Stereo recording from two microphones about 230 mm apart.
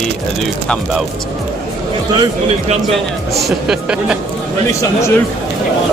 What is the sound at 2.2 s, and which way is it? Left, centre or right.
Speech, right.